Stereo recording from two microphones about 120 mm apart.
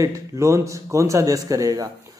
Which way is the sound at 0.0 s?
25° right (ahead or behind).